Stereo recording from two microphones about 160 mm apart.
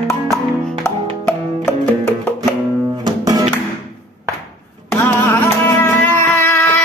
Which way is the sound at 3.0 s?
25° right (ahead or behind).